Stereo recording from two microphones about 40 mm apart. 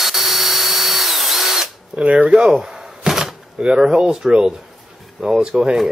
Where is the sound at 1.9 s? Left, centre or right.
Right.